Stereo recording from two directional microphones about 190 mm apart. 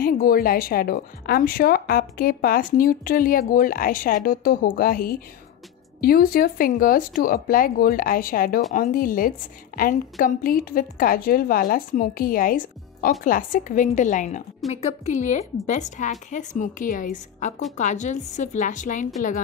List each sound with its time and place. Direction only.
0.0 s a woman's voice: 50° left (ahead or behind)